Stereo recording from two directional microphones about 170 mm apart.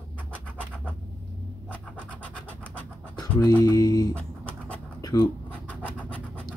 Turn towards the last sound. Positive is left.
turn(degrees=10)  # may be behind; listen again after turning